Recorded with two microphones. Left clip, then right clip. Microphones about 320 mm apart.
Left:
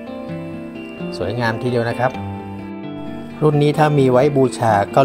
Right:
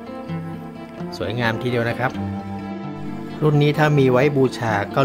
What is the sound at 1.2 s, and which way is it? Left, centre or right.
Speech, centre.